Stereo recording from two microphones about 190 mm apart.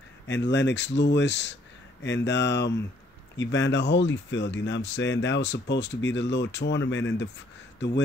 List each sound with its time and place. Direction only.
0.3 s speech: 65° left (ahead or behind)